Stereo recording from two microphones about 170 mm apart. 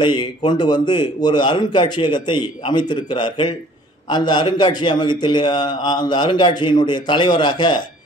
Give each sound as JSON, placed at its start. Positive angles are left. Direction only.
{"t": 0.0, "sound": "a man's voice", "side_deg": 25}